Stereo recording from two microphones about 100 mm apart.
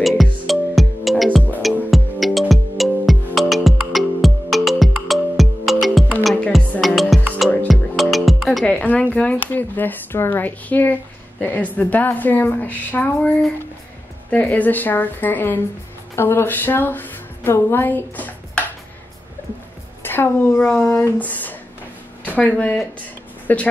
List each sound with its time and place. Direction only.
0.0 s music: centre (ahead or behind); by 11.0 s 15° left (ahead or behind)
11.4 s a woman's voice: 15° left (ahead or behind)
14.3 s a woman's voice: 15° left (ahead or behind)
20.0 s a woman's voice: 20° left (ahead or behind)
20.6 s a woman's voice: 10° left (ahead or behind)